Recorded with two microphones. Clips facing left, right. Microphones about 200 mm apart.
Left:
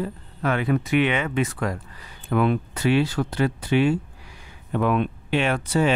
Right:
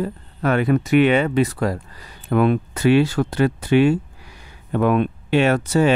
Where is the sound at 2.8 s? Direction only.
60° right (ahead or behind).